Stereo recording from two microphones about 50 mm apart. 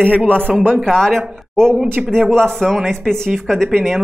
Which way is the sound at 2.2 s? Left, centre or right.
Centre.